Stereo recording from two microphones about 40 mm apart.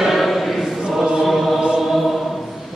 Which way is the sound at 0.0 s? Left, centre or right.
Centre.